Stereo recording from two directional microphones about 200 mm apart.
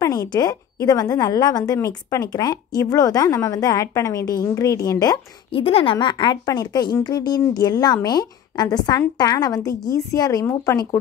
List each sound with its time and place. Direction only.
0.0 s a woman's voice: 20° left (ahead or behind)